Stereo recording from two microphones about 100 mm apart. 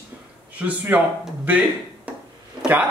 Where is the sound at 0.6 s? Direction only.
15° right (ahead or behind).